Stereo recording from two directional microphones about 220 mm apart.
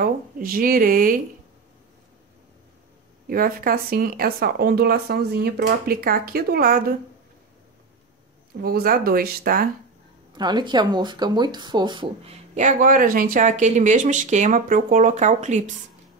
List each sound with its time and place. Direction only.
0.0 s speech: 40° right (ahead or behind)
3.3 s speech: 40° right (ahead or behind)
8.6 s speech: 45° right (ahead or behind)
10.3 s speech: 20° right (ahead or behind)